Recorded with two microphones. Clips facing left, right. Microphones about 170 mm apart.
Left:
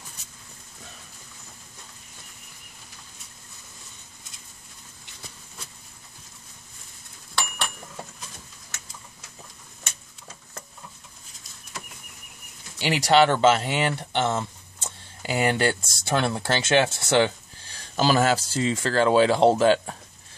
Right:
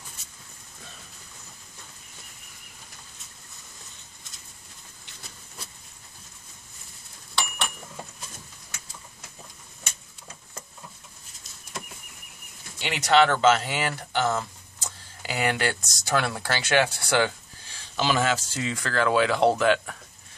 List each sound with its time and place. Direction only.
12.8 s speech: 35° left (ahead or behind)
17.9 s speech: 40° left (ahead or behind)